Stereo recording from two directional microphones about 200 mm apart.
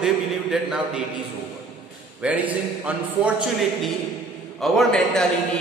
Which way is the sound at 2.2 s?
5° right (ahead or behind).